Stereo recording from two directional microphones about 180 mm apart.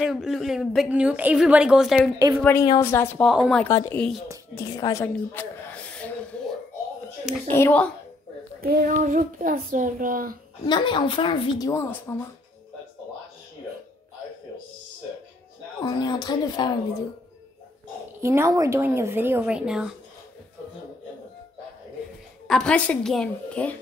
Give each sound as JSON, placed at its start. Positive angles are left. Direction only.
{"t": 0.0, "sound": "a woman's voice", "side_deg": 0}
{"t": 2.1, "sound": "speech", "side_deg": -15}
{"t": 2.8, "sound": "a woman's voice", "side_deg": 15}
{"t": 3.3, "sound": "a woman's voice", "side_deg": 0}
{"t": 3.6, "sound": "a woman's voice", "side_deg": 15}
{"t": 4.6, "sound": "a sound", "side_deg": 20}
{"t": 7.5, "sound": "a woman's voice", "side_deg": 10}
{"t": 8.5, "sound": "child singing", "side_deg": -55}
{"t": 10.7, "sound": "a woman's voice", "side_deg": 25}
{"t": 15.8, "sound": "speech", "side_deg": 25}
{"t": 18.2, "sound": "speech", "side_deg": -15}
{"t": 22.5, "sound": "a woman's voice", "side_deg": 5}